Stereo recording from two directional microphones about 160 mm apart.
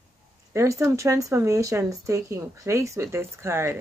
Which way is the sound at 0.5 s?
20° right (ahead or behind).